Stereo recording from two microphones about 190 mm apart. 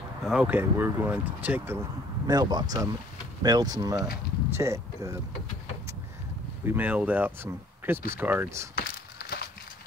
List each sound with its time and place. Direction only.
0.2 s speech: 5° right (ahead or behind)
2.2 s speech: 20° right (ahead or behind)
6.6 s speech: 10° right (ahead or behind)
8.7 s a sound: 55° left (ahead or behind)